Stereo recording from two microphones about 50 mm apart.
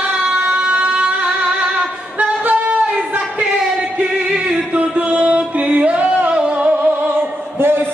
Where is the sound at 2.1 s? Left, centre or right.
Right.